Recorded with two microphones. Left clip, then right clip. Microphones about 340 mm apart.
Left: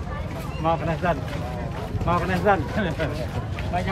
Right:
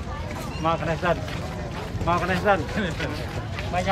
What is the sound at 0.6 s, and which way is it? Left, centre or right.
Speech, centre.